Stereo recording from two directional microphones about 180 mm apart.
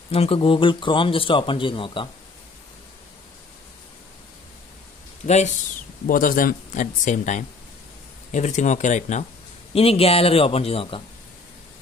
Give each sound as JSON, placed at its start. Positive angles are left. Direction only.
{"t": 0.1, "sound": "a man's voice", "side_deg": 30}
{"t": 5.2, "sound": "a man's voice", "side_deg": 40}